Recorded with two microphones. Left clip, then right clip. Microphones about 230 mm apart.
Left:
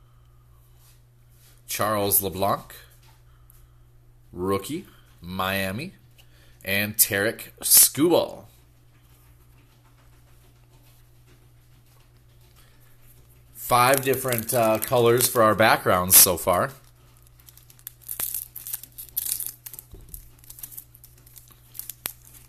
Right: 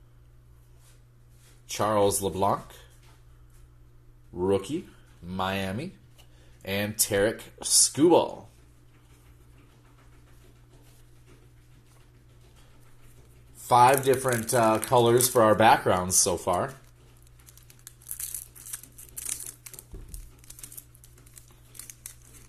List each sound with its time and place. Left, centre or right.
1.7 s speech: left
4.3 s speech: left
13.8 s speech: left
14.8 s speech: left
15.2 s speech: left